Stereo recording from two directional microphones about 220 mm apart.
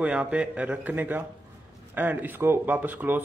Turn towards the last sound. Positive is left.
turn(degrees=-10)  # may be behind; listen again after turning